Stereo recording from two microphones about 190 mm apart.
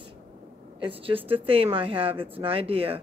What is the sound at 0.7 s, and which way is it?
Speech, 30° right (ahead or behind).